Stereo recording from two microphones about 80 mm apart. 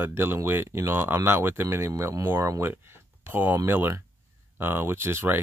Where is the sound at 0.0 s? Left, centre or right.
Right.